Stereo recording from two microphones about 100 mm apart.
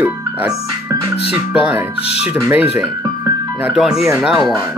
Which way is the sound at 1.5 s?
10° right (ahead or behind).